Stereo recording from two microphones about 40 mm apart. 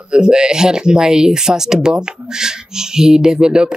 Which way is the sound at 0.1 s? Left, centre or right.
Right.